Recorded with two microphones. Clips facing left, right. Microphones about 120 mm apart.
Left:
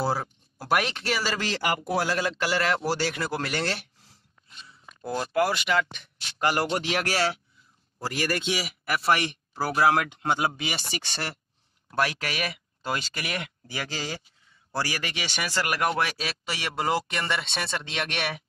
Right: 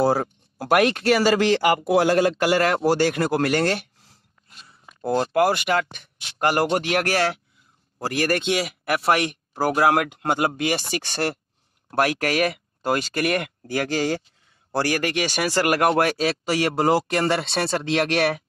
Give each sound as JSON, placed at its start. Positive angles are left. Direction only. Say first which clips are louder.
{"t": 0.0, "sound": "speech", "louder": "right 7 dB", "side_deg": -50}
{"t": 5.0, "sound": "speech", "louder": "right 6 dB", "side_deg": -50}